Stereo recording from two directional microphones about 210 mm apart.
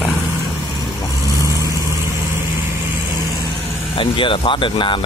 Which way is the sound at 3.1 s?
15° left (ahead or behind).